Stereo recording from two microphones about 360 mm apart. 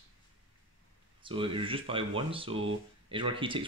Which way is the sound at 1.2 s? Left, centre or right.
Centre.